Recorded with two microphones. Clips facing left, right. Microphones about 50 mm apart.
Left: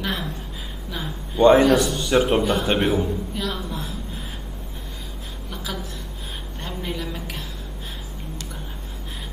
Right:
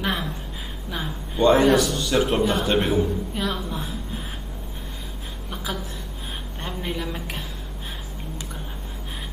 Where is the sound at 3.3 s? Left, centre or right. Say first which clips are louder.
Right 1 dB; centre.